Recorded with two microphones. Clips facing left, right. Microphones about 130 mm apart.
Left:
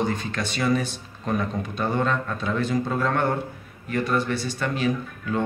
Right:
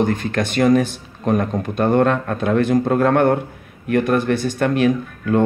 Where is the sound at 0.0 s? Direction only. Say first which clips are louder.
Right 7 dB; 50° right (ahead or behind).